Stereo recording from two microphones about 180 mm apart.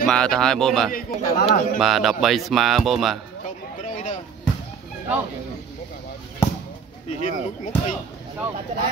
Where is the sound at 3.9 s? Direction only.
40° left (ahead or behind).